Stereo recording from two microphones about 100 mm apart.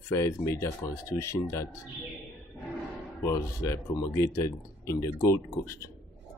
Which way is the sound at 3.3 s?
30° left (ahead or behind).